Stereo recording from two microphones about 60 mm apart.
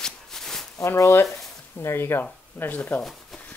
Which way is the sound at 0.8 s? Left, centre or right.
Left.